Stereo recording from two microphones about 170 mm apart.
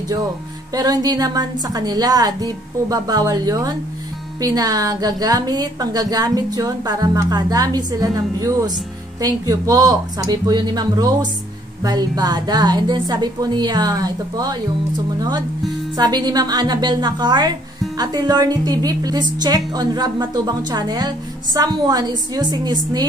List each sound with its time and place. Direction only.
0.7 s a woman's voice: 25° right (ahead or behind)